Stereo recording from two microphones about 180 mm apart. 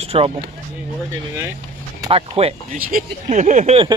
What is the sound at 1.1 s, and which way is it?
Speech, 15° right (ahead or behind).